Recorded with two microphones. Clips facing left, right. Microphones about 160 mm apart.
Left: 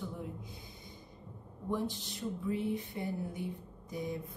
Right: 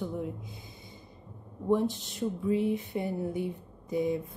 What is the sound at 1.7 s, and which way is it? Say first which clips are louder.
A woman's voice: right 9 dB; 20° right (ahead or behind).